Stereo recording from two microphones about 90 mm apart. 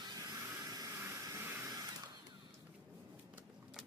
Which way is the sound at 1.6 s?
40° right (ahead or behind).